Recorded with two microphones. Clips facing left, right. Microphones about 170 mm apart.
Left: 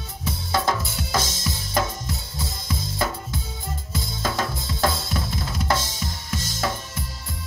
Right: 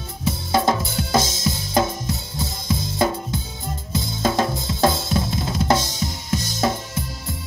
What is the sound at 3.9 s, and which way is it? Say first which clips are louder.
Drum kit: right 6 dB; 20° right (ahead or behind).